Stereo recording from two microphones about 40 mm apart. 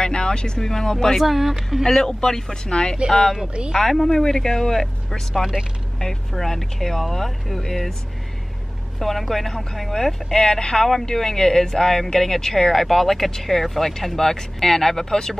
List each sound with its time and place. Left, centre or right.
0.0 s a sound: centre
0.6 s speech: centre
1.2 s speech: centre
2.0 s speech: centre
5.4 s speech: centre
5.9 s speech: centre
9.3 s speech: centre